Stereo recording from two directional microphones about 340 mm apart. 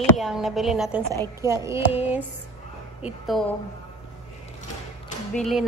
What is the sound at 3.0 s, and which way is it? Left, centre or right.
Speech, centre.